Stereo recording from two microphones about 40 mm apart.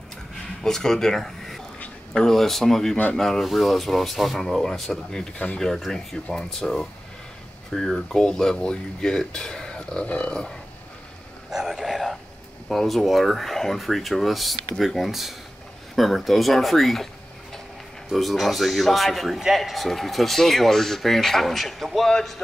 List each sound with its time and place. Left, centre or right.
0.7 s speech: centre
3.4 s speech: centre; by 10.3 s left
11.5 s a sound: centre
12.6 s speech: centre
18.1 s speech: centre